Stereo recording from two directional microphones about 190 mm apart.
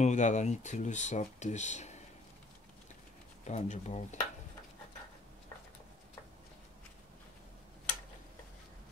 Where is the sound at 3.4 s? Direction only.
35° left (ahead or behind).